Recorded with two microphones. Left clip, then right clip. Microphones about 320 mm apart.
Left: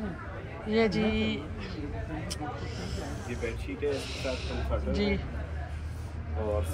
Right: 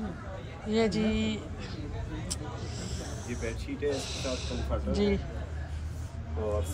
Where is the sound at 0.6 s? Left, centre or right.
Centre.